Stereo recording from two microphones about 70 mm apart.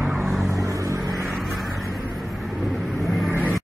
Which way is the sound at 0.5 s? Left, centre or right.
Right.